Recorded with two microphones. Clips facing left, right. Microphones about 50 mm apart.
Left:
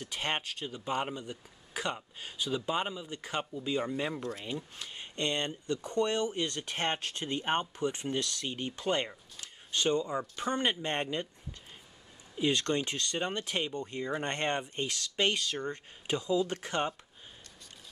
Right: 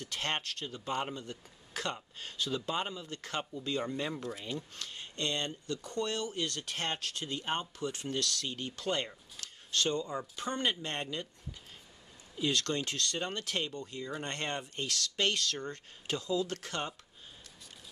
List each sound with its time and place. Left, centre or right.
0.0 s speech: centre
4.5 s speech: centre
12.4 s speech: left
13.7 s speech: left